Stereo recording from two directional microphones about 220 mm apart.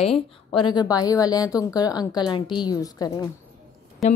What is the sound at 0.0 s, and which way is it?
A woman's voice, 25° left (ahead or behind).